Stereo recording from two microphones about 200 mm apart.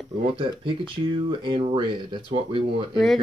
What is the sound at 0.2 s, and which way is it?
Speech, 25° right (ahead or behind).